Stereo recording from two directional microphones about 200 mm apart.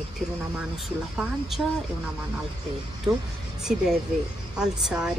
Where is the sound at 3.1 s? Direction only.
20° right (ahead or behind).